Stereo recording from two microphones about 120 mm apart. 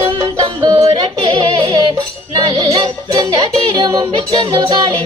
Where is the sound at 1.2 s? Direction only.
45° right (ahead or behind).